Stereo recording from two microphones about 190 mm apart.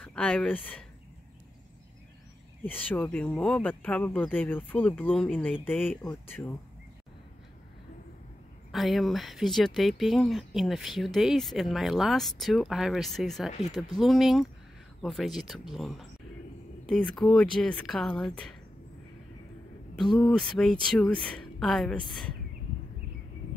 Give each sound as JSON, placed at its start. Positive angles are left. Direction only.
{"t": 0.0, "sound": "speech", "side_deg": 5}
{"t": 2.6, "sound": "speech", "side_deg": 10}
{"t": 8.7, "sound": "speech", "side_deg": 0}
{"t": 17.1, "sound": "speech", "side_deg": 5}
{"t": 20.2, "sound": "speech", "side_deg": 0}